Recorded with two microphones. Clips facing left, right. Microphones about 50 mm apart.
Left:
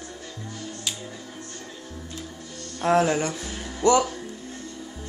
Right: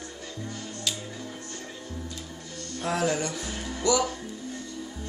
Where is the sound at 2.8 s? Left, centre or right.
Left.